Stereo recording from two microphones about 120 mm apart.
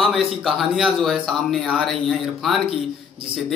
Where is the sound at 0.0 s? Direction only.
Centre (ahead or behind).